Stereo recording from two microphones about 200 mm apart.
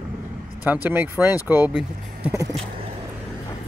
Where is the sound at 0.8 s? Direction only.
10° right (ahead or behind).